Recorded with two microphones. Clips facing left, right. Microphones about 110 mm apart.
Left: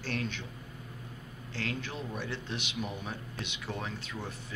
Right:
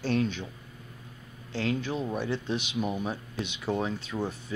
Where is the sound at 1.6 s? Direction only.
20° right (ahead or behind).